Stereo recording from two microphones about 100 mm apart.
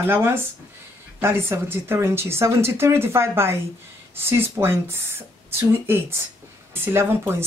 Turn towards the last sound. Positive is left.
turn(degrees=-25)  # may be behind; listen again after turning